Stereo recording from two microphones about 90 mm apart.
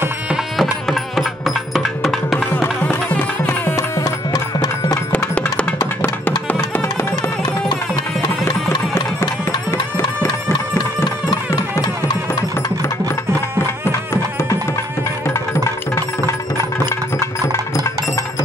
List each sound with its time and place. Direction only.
0.6 s music: centre (ahead or behind)
2.3 s music: 20° left (ahead or behind); by 5.0 s 40° left (ahead or behind)
5.1 s music: 15° left (ahead or behind)
7.2 s music: 50° left (ahead or behind)
8.5 s music: 35° left (ahead or behind)
11.2 s music: 45° left (ahead or behind)